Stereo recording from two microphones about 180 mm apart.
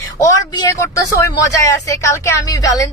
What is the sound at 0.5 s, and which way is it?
A woman's voice, 20° left (ahead or behind).